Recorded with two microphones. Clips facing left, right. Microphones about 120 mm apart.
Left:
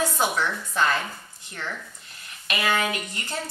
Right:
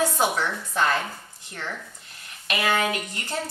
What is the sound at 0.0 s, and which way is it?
A woman's voice, 35° right (ahead or behind).